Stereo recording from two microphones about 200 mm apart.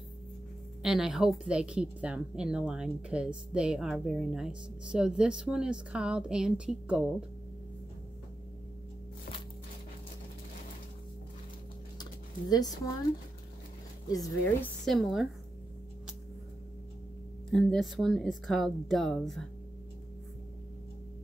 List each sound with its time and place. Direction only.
0.8 s a woman's voice: centre (ahead or behind)
12.0 s a sound: 20° left (ahead or behind)
14.0 s speech: 20° left (ahead or behind)
14.9 s a woman's voice: centre (ahead or behind)
17.5 s a woman's voice: 5° left (ahead or behind)